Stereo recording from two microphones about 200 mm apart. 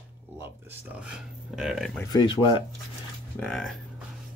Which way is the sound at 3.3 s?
5° left (ahead or behind).